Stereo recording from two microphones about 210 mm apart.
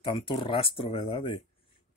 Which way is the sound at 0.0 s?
25° left (ahead or behind).